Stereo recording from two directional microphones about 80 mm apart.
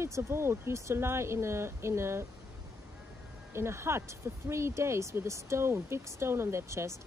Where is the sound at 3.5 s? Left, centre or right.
Right.